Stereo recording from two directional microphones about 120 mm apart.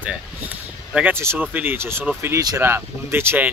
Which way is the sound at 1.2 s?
15° right (ahead or behind).